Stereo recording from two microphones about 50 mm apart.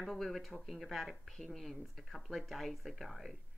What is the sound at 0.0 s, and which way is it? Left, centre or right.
Speech, centre.